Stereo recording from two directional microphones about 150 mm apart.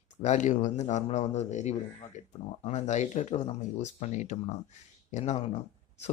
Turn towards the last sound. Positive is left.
turn(degrees=45)  # may be behind; listen again after turning